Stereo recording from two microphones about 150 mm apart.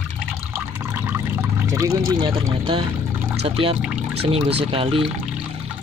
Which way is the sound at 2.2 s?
35° right (ahead or behind).